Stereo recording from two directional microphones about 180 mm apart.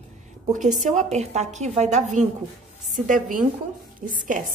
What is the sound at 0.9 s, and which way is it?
A woman's voice, 40° right (ahead or behind).